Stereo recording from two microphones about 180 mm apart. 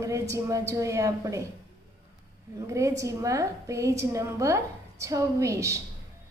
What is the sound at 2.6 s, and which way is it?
A woman's voice, 15° right (ahead or behind).